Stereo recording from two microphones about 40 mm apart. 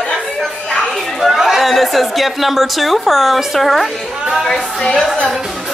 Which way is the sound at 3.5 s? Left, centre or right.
Centre.